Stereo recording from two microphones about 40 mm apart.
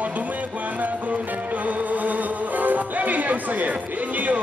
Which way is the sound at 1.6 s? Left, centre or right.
Right.